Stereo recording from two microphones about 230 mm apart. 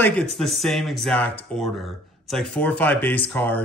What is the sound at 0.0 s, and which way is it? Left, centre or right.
Speech, centre.